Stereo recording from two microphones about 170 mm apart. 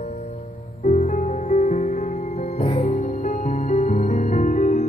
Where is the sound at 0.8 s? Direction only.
40° left (ahead or behind).